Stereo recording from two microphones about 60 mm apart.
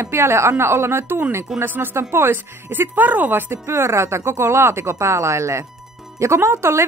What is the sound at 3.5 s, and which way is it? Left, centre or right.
A woman's voice, right.